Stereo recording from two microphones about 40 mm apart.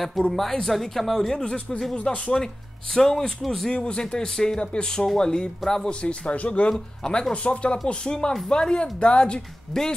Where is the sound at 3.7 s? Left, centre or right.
Left.